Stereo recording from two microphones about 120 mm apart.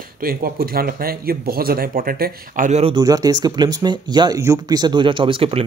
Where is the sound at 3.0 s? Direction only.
30° right (ahead or behind).